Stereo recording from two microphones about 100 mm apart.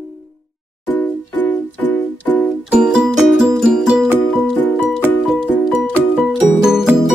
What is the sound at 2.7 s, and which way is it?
Music, 10° right (ahead or behind).